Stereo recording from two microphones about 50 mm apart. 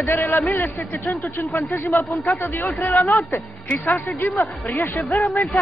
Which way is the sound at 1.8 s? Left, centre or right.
Left.